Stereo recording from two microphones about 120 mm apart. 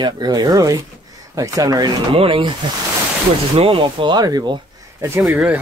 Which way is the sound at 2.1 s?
45° right (ahead or behind).